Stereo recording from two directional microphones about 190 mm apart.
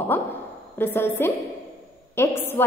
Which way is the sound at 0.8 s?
10° left (ahead or behind).